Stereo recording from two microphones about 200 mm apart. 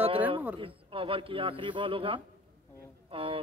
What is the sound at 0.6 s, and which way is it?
A man's voice, 25° right (ahead or behind).